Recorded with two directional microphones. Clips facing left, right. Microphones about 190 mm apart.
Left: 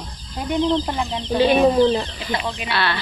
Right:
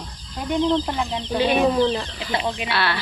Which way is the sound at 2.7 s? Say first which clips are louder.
Left 3 dB; 5° right (ahead or behind).